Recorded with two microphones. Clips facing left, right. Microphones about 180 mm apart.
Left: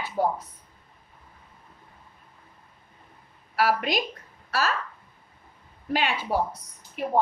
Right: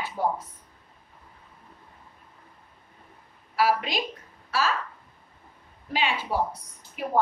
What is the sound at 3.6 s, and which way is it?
Speech, 50° left (ahead or behind).